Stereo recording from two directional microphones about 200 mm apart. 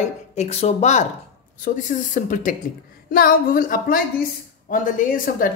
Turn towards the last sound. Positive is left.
turn(degrees=45)  # may be behind; listen again after turning